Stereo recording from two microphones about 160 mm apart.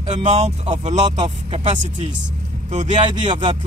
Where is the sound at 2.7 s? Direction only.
45° right (ahead or behind).